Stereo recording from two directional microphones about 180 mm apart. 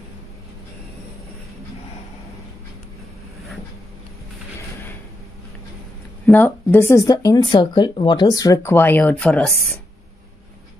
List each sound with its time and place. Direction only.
6.2 s speech: 10° left (ahead or behind)